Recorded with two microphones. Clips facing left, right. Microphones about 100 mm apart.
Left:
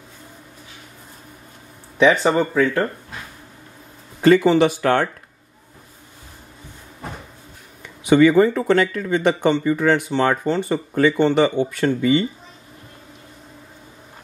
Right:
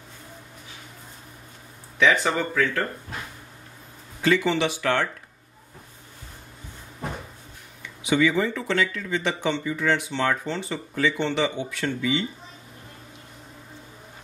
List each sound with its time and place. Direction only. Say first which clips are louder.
2.0 s speech: left 6 dB; 20° left (ahead or behind)
4.2 s speech: left 8 dB; 45° left (ahead or behind)
7.8 s speech: left 8 dB; 50° left (ahead or behind)